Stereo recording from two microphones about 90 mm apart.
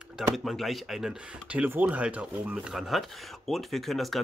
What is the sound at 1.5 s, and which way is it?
Speech, 15° right (ahead or behind).